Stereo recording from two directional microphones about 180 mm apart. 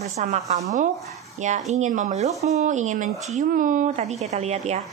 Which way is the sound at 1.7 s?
40° right (ahead or behind).